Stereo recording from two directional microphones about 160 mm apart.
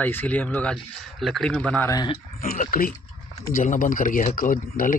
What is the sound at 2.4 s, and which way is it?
Speech, 45° left (ahead or behind).